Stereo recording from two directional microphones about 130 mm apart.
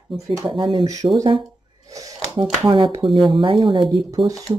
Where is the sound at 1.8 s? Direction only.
25° right (ahead or behind).